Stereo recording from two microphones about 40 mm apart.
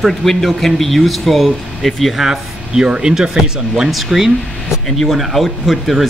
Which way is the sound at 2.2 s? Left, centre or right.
Centre.